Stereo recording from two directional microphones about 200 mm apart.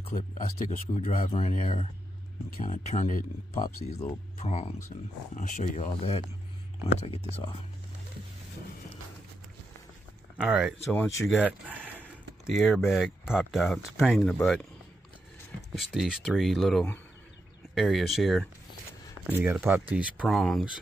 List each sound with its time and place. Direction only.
0.0 s speech: 40° left (ahead or behind)
10.3 s speech: 5° right (ahead or behind)
15.7 s speech: centre (ahead or behind)